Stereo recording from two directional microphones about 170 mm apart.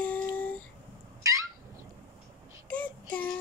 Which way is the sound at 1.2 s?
20° right (ahead or behind).